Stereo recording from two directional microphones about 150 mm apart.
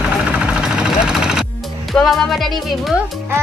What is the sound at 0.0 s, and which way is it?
Vehicle, 5° right (ahead or behind).